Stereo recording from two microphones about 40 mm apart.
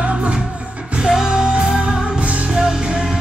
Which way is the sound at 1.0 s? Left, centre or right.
Centre.